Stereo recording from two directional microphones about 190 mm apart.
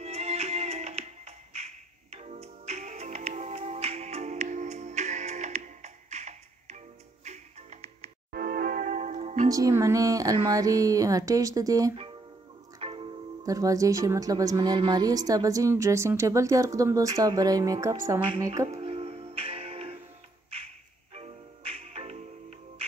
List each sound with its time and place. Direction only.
0.0 s music: 35° right (ahead or behind)
8.3 s music: 50° right (ahead or behind)
9.5 s a woman's voice: 20° right (ahead or behind)
12.7 s music: 30° right (ahead or behind)
13.4 s a woman's voice: 15° right (ahead or behind)
18.7 s music: 30° right (ahead or behind)
21.1 s music: 35° right (ahead or behind)